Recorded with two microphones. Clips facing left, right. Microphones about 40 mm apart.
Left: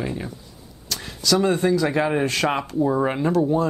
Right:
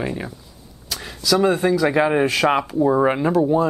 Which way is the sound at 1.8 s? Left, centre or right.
Centre.